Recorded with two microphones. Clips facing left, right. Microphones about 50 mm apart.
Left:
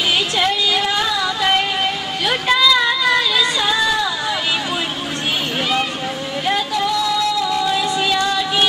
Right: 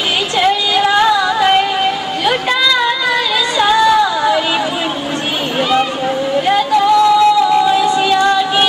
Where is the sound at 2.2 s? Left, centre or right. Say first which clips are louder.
Right 1 dB; centre.